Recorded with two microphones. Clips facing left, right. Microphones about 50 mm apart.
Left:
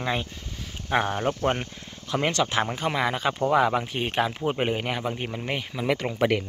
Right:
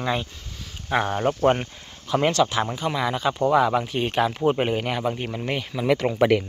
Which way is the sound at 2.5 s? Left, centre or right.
Left.